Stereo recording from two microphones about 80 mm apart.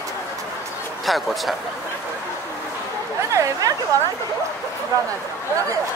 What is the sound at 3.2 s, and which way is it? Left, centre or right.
Speech, right.